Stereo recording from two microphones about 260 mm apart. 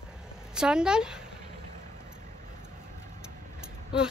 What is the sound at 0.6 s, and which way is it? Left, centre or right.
Speech, centre.